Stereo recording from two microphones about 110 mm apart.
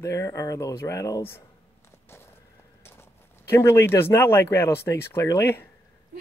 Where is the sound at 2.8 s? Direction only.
20° left (ahead or behind).